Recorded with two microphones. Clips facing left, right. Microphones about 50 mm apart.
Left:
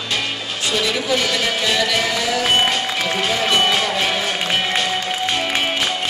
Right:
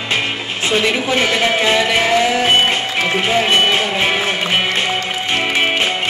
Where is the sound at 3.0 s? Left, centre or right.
Right.